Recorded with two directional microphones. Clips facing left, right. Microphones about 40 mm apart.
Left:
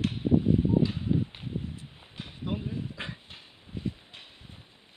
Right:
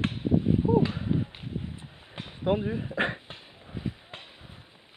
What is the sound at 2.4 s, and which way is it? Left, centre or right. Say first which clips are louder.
Speech: right 7 dB; right.